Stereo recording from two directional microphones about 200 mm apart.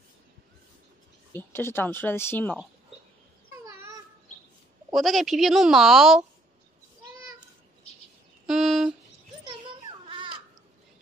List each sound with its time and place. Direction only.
1.3 s speech: 10° left (ahead or behind)
3.6 s babbling: 15° right (ahead or behind)
4.9 s a woman's voice: centre (ahead or behind)
8.5 s a sound: centre (ahead or behind)
9.4 s children playing: 25° right (ahead or behind)